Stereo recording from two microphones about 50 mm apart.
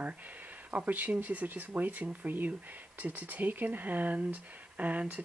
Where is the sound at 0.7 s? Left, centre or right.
Right.